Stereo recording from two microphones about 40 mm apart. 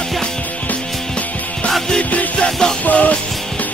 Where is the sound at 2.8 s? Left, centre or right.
Left.